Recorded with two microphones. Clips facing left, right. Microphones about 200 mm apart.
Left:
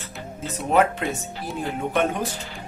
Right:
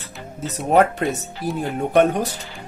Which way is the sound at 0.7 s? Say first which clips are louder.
Right 3 dB; 40° right (ahead or behind).